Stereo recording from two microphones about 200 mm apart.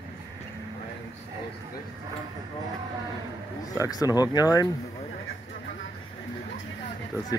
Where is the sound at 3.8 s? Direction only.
20° left (ahead or behind).